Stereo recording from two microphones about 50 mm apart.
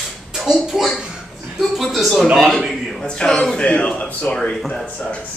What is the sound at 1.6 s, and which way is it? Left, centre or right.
A man's voice, centre.